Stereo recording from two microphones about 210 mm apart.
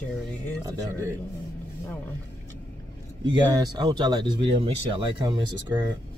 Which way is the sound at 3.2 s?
20° right (ahead or behind).